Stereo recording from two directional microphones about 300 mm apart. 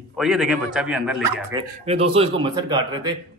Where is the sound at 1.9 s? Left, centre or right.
Centre.